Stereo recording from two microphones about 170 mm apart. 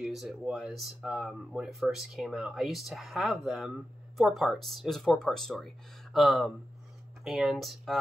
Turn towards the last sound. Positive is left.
turn(degrees=0)  # may be behind; listen again after turning